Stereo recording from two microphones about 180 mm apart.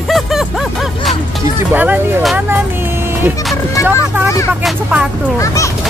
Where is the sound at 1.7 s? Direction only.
10° right (ahead or behind).